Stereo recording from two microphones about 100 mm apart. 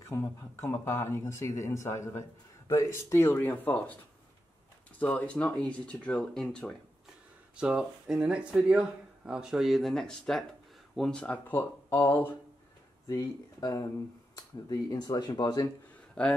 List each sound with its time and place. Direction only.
0.1 s speech: 25° left (ahead or behind); by 6.8 s 5° left (ahead or behind)
7.6 s speech: 5° right (ahead or behind); by 12.4 s 20° left (ahead or behind)
13.1 s speech: 35° left (ahead or behind)
16.2 s speech: 10° left (ahead or behind)